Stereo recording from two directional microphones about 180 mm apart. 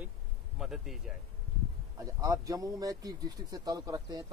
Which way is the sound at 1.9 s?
20° right (ahead or behind).